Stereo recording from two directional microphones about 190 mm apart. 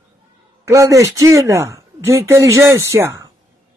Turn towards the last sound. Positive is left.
turn(degrees=-15)  # may be behind; listen again after turning